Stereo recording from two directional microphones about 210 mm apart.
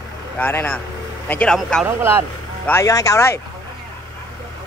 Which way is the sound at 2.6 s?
15° left (ahead or behind).